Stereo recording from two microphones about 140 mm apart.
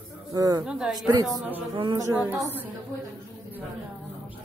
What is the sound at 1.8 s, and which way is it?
Speech, 35° right (ahead or behind).